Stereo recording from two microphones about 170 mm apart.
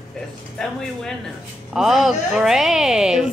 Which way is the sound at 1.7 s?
Centre (ahead or behind).